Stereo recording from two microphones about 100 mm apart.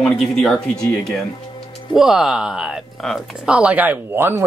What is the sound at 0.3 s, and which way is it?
Speech, 5° left (ahead or behind).